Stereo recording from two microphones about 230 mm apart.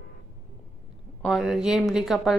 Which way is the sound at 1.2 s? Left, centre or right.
Centre.